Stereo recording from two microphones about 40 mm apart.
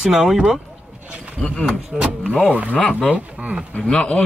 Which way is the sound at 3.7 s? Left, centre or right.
Left.